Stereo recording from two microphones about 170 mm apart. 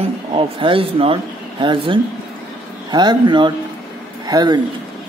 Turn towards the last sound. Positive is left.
turn(degrees=-20)  # may be behind; listen again after turning